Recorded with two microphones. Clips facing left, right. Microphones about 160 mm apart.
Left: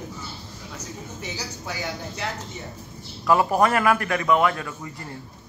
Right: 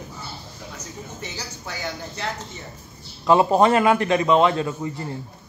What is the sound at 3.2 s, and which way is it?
A man's voice, 25° right (ahead or behind).